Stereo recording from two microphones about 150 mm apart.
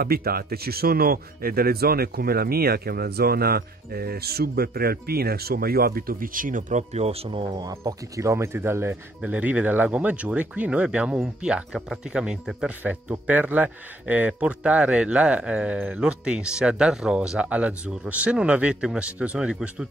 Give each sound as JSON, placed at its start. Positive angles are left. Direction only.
{"t": 0.0, "sound": "speech", "side_deg": -85}
{"t": 7.5, "sound": "speech", "side_deg": -20}